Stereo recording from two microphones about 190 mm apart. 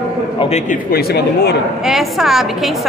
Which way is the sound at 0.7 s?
55° left (ahead or behind).